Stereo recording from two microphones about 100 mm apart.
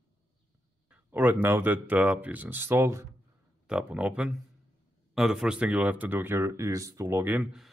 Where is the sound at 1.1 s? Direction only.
15° right (ahead or behind).